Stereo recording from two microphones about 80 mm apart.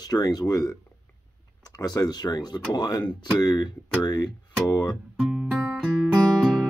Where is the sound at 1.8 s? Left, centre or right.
Left.